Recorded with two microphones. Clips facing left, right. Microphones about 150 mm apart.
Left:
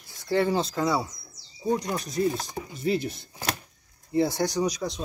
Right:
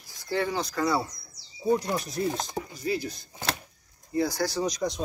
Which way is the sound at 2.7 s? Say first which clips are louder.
Left 7 dB; 25° left (ahead or behind).